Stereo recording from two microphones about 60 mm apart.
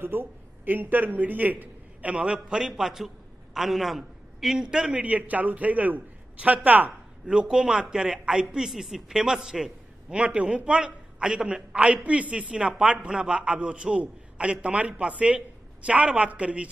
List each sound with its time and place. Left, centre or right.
0.0 s a man's voice: right; by 2.6 s centre
2.6 s a man's voice: centre
5.0 s a man's voice: right; by 10.1 s centre
10.1 s a man's voice: right